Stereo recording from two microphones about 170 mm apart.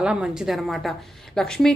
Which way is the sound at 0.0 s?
5° right (ahead or behind).